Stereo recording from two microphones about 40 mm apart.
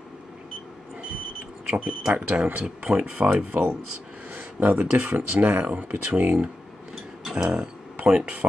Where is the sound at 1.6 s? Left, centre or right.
Right.